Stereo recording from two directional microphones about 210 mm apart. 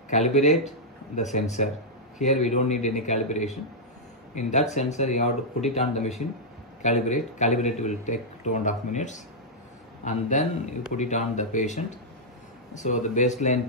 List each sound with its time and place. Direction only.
0.1 s speech: 35° left (ahead or behind)